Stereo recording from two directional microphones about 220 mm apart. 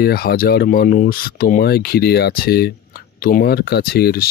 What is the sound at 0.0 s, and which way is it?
Speech, 45° left (ahead or behind).